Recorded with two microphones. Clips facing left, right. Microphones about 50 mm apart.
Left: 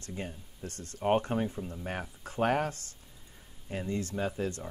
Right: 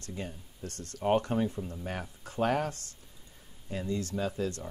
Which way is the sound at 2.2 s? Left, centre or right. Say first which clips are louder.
Even; left.